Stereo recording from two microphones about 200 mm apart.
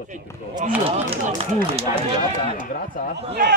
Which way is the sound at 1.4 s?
30° right (ahead or behind).